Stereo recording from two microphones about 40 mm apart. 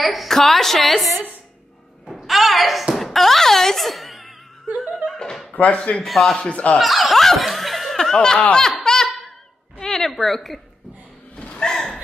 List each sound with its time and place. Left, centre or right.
0.0 s a woman's voice: centre
2.2 s thump: centre
3.1 s wail: centre
4.7 s laughter: centre
5.5 s speech: left
6.0 s a woman's voice: centre
6.8 s snicker: centre
8.1 s laughter: centre
9.8 s a sound: centre
11.3 s gasp: left
11.7 s laughter: centre